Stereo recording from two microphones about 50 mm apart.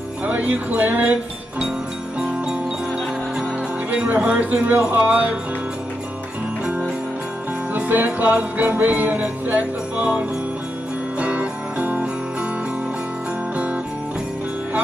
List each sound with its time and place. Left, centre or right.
0.2 s music: right
2.1 s jingle bell: centre
3.9 s music: right
7.9 s music: right
11.1 s jingle bell: right